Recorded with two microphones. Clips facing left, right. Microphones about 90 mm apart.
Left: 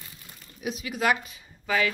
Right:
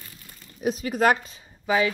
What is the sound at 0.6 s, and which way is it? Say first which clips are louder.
Speech: right 6 dB; 40° right (ahead or behind).